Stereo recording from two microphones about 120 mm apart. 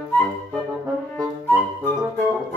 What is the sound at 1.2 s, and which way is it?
Flute, 25° right (ahead or behind).